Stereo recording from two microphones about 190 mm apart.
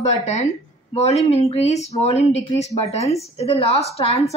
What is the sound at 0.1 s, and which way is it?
Speech, 35° left (ahead or behind).